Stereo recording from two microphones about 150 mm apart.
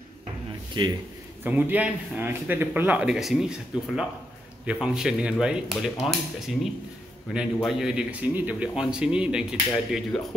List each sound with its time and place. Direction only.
0.8 s a man's voice: 30° right (ahead or behind)
1.4 s a man's voice: 10° right (ahead or behind)
7.3 s speech: 5° right (ahead or behind)